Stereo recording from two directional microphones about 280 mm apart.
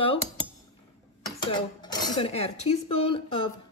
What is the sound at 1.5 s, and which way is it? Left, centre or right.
Speech, centre.